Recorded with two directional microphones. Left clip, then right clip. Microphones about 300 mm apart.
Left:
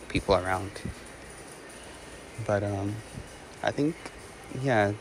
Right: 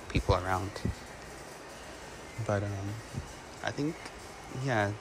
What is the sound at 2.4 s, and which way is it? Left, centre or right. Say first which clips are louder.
Speech: left 6 dB; centre.